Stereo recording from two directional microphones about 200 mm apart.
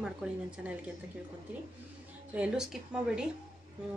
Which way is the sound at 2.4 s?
5° right (ahead or behind).